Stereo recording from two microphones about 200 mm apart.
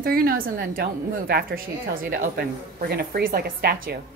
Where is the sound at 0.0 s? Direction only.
45° right (ahead or behind).